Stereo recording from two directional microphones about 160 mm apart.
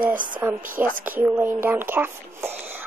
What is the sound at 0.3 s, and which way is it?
Speech, 15° right (ahead or behind).